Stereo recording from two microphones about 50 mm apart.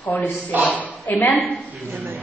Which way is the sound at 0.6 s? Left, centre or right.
Left.